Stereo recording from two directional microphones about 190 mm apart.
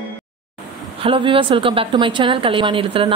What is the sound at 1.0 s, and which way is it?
A woman's voice, 30° right (ahead or behind).